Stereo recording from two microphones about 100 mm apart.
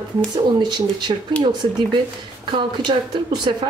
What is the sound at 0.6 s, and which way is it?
Speech, 45° right (ahead or behind).